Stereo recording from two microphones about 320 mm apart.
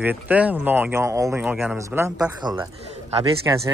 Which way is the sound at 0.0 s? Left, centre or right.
Centre.